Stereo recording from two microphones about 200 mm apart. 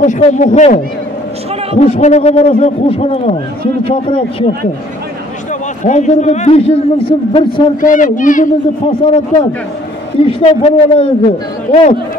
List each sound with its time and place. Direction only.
0.0 s a man's voice: 35° left (ahead or behind)
1.8 s a man's voice: 35° left (ahead or behind)
5.9 s a man's voice: 35° left (ahead or behind)
7.8 s a man's voice: 40° left (ahead or behind)
8.8 s a man's voice: 25° left (ahead or behind)